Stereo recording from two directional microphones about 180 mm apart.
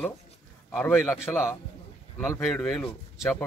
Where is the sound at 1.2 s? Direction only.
15° left (ahead or behind).